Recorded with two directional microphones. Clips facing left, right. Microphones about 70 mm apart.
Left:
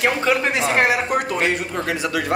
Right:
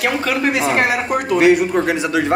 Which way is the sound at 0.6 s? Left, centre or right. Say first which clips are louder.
Right 1 dB; centre.